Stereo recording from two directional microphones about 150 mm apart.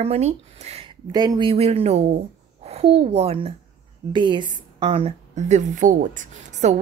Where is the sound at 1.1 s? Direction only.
25° right (ahead or behind).